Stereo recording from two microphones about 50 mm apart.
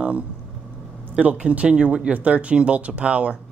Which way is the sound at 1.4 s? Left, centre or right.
Right.